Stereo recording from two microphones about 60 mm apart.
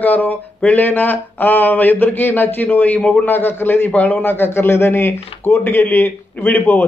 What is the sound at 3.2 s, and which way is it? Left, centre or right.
A man's voice, left.